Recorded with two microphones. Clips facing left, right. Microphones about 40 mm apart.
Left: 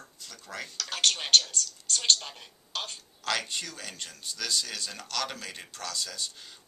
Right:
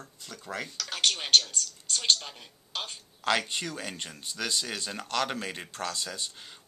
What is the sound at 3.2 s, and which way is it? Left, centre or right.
Speech, right.